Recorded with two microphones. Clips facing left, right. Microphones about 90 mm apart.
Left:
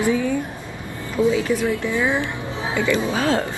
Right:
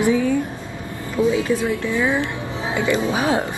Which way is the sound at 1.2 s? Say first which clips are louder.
Even; 20° right (ahead or behind).